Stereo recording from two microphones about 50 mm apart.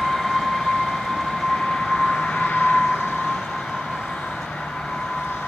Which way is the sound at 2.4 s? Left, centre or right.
Left.